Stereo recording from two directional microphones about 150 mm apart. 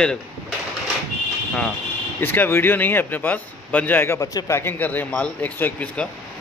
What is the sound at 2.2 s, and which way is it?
Speech, 15° left (ahead or behind).